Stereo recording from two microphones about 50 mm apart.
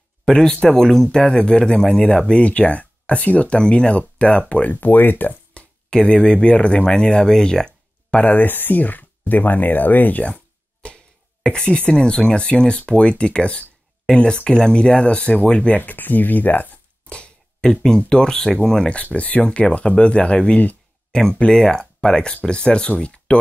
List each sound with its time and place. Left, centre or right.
0.2 s speech: centre; by 5.3 s left
5.5 s a sound: left
5.9 s speech: centre
8.2 s speech: left
10.2 s a sound: left
11.4 s speech: left
15.7 s speech: left
17.1 s a sound: left
17.6 s speech: centre
19.1 s speech: left
21.1 s speech: centre